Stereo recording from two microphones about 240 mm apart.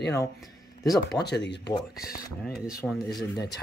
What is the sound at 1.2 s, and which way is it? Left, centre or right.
Speech, left.